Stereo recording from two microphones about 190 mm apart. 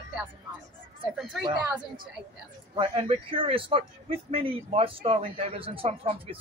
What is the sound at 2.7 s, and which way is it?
Speech, 25° right (ahead or behind).